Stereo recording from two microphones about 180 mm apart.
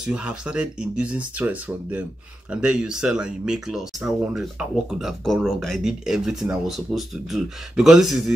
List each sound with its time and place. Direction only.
0.0 s speech: 5° right (ahead or behind)